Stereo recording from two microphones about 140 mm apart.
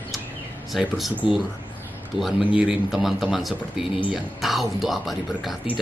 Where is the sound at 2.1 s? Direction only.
Centre (ahead or behind).